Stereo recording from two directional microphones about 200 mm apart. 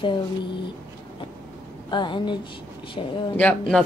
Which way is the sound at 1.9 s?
25° left (ahead or behind).